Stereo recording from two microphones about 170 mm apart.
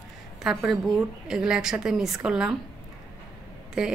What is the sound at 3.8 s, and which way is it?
Speech, 5° right (ahead or behind).